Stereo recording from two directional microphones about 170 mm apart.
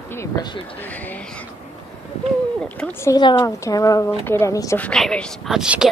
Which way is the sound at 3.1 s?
25° left (ahead or behind).